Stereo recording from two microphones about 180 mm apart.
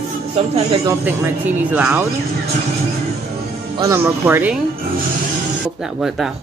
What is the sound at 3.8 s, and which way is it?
Speech, 15° right (ahead or behind).